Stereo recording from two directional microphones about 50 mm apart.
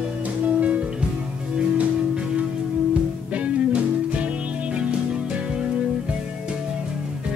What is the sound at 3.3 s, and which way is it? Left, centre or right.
Music, right.